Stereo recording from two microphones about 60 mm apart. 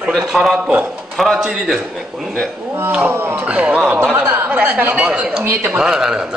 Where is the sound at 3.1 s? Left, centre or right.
Right.